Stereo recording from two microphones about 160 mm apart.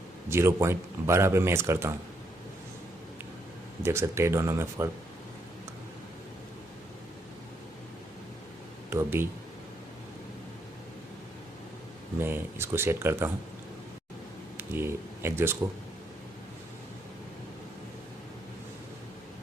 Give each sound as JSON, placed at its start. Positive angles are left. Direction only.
{"t": 0.3, "sound": "speech", "side_deg": -15}
{"t": 3.8, "sound": "speech", "side_deg": -15}
{"t": 8.9, "sound": "speech", "side_deg": -15}
{"t": 12.2, "sound": "speech", "side_deg": -15}
{"t": 14.6, "sound": "speech", "side_deg": -15}